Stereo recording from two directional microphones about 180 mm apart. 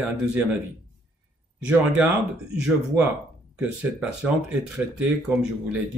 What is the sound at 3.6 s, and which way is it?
Speech, 5° right (ahead or behind).